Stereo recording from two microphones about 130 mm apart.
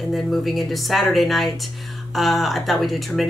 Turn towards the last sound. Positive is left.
turn(degrees=0)  # may be behind; listen again after turning